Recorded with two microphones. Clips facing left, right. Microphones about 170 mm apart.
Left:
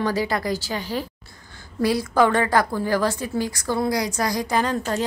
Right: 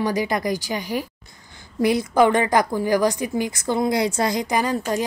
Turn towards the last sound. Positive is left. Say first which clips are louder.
# right 1 dB
turn(degrees=-10)  # may be behind; listen again after turning